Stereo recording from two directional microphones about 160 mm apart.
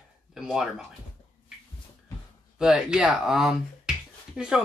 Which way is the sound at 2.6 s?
5° right (ahead or behind).